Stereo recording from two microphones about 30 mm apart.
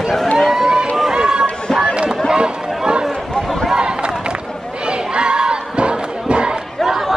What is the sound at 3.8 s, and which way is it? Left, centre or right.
Run, right.